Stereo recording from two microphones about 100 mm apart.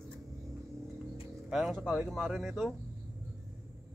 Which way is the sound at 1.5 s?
Centre (ahead or behind).